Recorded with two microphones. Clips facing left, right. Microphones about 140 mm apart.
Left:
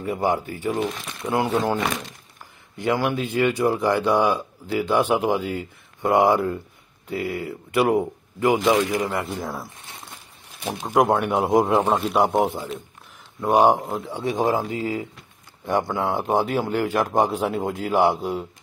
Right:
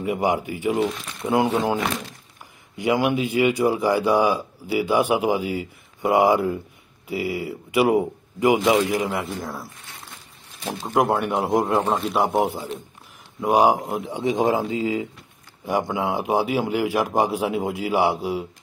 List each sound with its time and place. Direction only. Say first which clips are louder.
0.0 s a man's voice: right 1 dB; 15° right (ahead or behind)
2.8 s a man's voice: right 2 dB; 10° right (ahead or behind)
10.6 s speech: left 1 dB; 15° left (ahead or behind)
11.0 s speech: left 2 dB; centre (ahead or behind)
13.4 s a man's voice: left 1 dB; 10° right (ahead or behind)